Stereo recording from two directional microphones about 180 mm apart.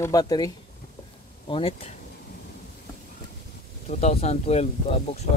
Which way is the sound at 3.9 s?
35° left (ahead or behind).